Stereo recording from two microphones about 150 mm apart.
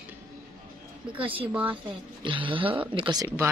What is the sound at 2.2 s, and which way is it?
Speech, 35° right (ahead or behind).